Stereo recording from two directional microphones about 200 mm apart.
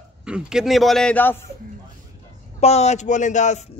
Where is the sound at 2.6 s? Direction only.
35° left (ahead or behind).